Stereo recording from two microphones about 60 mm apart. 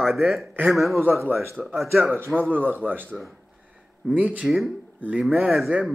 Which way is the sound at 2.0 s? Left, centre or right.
Right.